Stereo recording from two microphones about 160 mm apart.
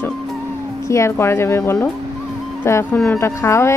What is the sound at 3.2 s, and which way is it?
Speech, 15° left (ahead or behind).